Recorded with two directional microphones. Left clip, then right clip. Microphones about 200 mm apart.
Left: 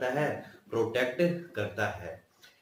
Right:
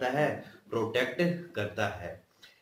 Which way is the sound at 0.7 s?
15° right (ahead or behind).